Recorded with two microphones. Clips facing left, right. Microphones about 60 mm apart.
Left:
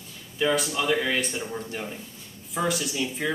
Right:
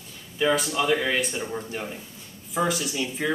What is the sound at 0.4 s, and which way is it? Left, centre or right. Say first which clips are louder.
Speech: right 2 dB; centre.